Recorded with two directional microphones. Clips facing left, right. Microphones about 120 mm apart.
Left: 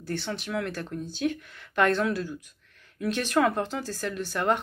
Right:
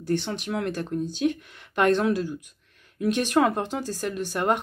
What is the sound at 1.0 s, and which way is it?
Speech, 15° right (ahead or behind).